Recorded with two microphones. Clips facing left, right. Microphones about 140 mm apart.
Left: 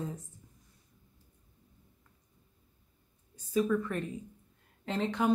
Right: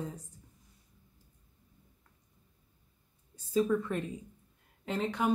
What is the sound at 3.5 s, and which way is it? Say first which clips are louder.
Speech: even; 20° right (ahead or behind).